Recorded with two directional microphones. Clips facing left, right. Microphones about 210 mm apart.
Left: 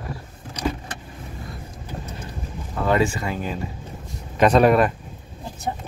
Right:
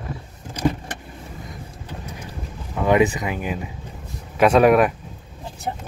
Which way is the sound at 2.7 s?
15° right (ahead or behind).